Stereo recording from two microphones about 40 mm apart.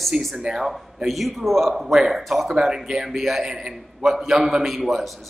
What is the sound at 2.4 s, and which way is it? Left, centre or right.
Speech, right.